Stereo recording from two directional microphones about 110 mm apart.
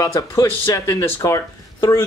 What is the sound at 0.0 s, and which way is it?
Speech, 30° left (ahead or behind).